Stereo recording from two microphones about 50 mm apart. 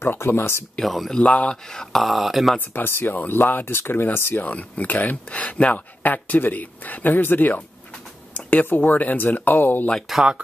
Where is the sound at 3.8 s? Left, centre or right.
Left.